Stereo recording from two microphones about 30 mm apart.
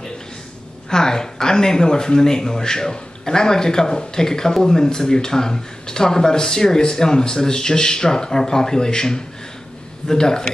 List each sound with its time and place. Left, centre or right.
0.8 s speech: left